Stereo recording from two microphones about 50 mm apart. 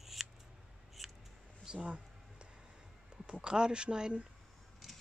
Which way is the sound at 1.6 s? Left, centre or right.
Centre.